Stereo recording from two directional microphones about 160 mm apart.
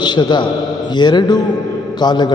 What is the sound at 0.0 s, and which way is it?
A man's voice, 30° left (ahead or behind).